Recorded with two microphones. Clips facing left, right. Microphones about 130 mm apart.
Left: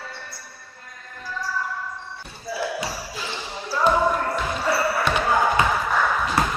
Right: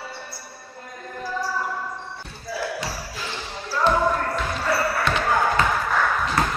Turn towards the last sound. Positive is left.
turn(degrees=5)  # may be behind; listen again after turning